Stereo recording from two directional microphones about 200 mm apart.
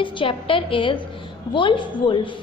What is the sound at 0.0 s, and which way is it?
A woman's voice, 25° left (ahead or behind).